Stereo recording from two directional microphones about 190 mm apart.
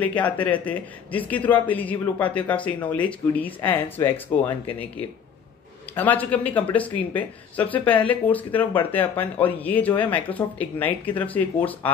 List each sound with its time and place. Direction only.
0.0 s speech: 10° left (ahead or behind)
5.9 s speech: 10° left (ahead or behind)